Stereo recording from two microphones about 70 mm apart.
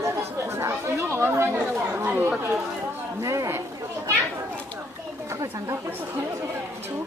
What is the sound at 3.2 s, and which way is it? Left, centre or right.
Speech, right.